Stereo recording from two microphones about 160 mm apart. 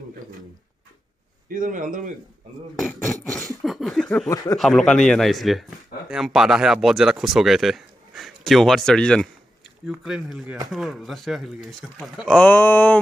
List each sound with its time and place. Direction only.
1.5 s speech: 55° right (ahead or behind)
2.7 s a man's voice: centre (ahead or behind)
3.6 s a sound: centre (ahead or behind)
4.3 s speech: 20° left (ahead or behind)
4.6 s a man's voice: centre (ahead or behind)